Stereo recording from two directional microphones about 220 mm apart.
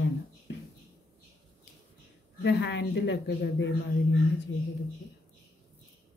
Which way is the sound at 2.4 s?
50° left (ahead or behind).